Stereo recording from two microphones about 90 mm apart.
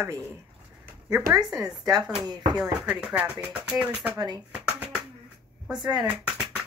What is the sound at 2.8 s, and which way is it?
Speech, 15° right (ahead or behind).